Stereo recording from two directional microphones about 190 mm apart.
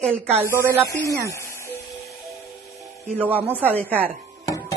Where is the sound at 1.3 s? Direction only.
15° left (ahead or behind).